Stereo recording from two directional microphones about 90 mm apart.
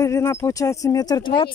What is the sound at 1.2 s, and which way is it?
Speech, 65° left (ahead or behind).